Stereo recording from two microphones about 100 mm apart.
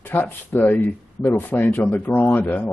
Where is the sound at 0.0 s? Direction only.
20° left (ahead or behind).